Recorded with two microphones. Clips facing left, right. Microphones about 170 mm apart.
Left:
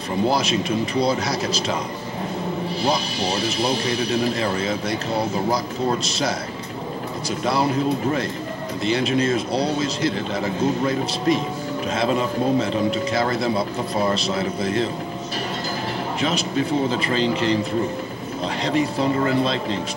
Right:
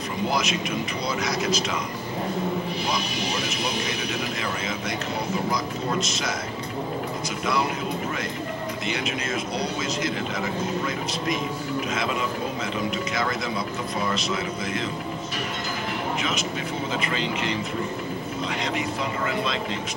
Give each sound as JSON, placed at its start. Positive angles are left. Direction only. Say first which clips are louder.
{"t": 0.3, "sound": "speech", "louder": "left 3 dB", "side_deg": 30}
{"t": 2.8, "sound": "speech", "louder": "left 5 dB", "side_deg": 30}
{"t": 7.4, "sound": "speech", "louder": "left 6 dB", "side_deg": 35}
{"t": 16.2, "sound": "speech", "louder": "left 6 dB", "side_deg": 35}
{"t": 18.6, "sound": "speech", "louder": "left 10 dB", "side_deg": 35}